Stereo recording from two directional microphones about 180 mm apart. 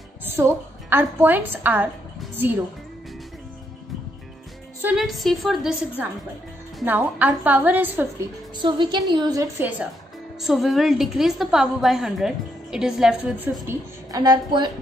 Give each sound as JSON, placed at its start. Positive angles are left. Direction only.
{"t": 0.2, "sound": "a woman's voice", "side_deg": -10}
{"t": 4.8, "sound": "a woman's voice", "side_deg": 0}
{"t": 8.6, "sound": "a woman's voice", "side_deg": -25}
{"t": 10.4, "sound": "a woman's voice", "side_deg": 0}
{"t": 13.7, "sound": "a woman's voice", "side_deg": -20}